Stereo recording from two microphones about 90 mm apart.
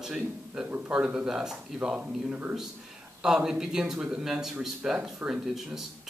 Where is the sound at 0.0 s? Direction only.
5° right (ahead or behind).